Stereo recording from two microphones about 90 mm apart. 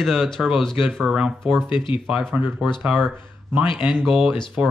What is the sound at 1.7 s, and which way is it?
Speech, 65° left (ahead or behind).